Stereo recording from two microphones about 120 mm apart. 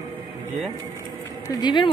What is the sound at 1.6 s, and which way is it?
Speech, 40° left (ahead or behind).